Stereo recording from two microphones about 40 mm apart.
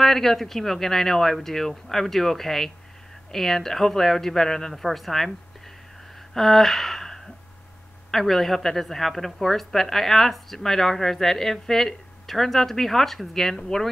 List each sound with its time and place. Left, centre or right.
0.0 s a woman's voice: centre
4.8 s speech: centre
6.3 s a sound: centre
8.1 s a woman's voice: centre